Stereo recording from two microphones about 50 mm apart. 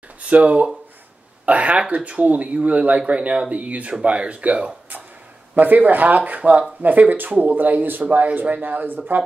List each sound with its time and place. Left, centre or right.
0.2 s speech: right